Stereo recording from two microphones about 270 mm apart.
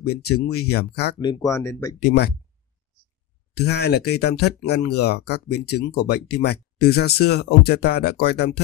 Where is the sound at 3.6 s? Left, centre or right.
Left.